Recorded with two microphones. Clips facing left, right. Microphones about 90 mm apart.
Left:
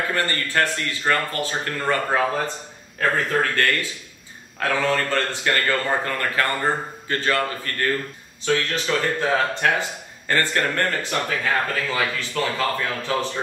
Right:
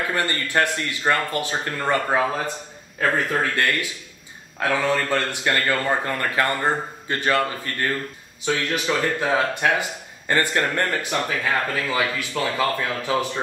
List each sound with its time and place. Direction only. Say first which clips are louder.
0.1 s a man's voice: even; 20° right (ahead or behind)